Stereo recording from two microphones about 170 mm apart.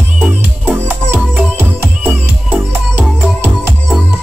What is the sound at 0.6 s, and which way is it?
Music, 10° right (ahead or behind).